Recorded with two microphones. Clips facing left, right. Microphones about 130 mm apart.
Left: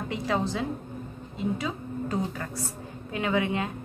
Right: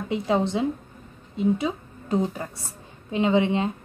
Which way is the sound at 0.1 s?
25° right (ahead or behind).